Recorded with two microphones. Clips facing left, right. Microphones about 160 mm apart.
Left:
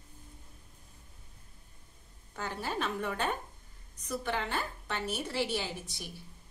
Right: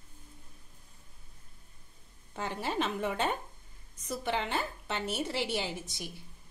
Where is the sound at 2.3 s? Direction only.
25° right (ahead or behind).